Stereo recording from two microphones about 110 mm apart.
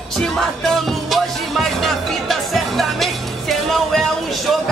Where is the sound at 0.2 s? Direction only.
5° left (ahead or behind).